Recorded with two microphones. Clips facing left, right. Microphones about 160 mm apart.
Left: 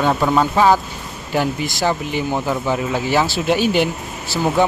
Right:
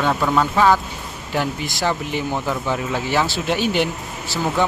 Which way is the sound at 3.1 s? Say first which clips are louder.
Left 4 dB; 5° left (ahead or behind).